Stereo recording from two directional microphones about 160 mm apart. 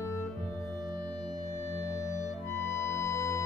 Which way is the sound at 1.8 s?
20° left (ahead or behind).